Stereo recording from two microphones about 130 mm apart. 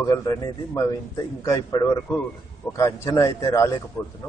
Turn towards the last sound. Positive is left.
turn(degrees=0)  # may be behind; listen again after turning